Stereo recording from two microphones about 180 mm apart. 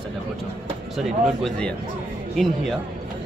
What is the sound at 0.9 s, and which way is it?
Speech, centre (ahead or behind).